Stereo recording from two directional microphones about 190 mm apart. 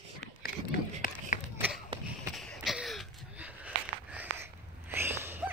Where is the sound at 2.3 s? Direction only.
Centre (ahead or behind).